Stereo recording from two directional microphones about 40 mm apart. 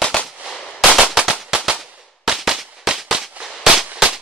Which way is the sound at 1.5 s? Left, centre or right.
Centre.